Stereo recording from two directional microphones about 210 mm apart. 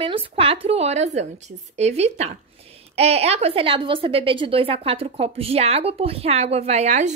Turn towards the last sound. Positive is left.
turn(degrees=-35)  # may be behind; listen again after turning